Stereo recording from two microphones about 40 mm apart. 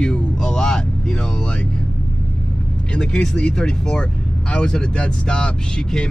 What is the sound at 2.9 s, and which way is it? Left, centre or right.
Speech, left.